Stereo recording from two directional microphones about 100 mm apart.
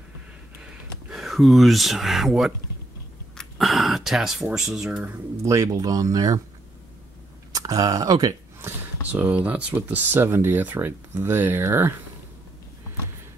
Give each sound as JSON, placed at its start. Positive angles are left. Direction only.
{"t": 0.6, "sound": "a sound", "side_deg": -5}
{"t": 5.4, "sound": "speech", "side_deg": -30}
{"t": 7.5, "sound": "speech", "side_deg": -35}
{"t": 9.1, "sound": "speech", "side_deg": -15}